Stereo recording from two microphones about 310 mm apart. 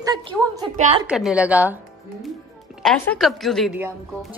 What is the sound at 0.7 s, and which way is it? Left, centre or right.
Speech, right.